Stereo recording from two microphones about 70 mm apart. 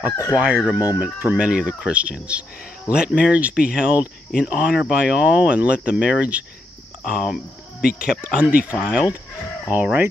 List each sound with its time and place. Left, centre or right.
0.7 s speech: right
7.1 s speech: centre
9.7 s speech: right